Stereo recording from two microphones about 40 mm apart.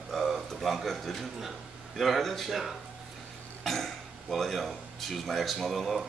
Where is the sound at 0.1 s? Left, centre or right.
Centre.